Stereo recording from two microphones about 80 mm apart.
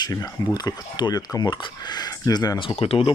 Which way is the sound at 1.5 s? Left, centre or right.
Left.